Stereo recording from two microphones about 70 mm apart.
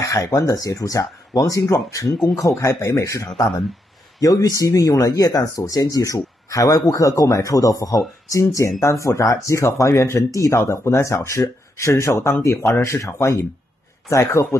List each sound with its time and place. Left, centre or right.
0.0 s speech: left
2.1 s speech: centre
2.6 s speech: left